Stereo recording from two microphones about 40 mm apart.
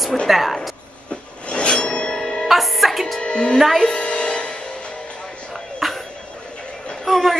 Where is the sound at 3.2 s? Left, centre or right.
Left.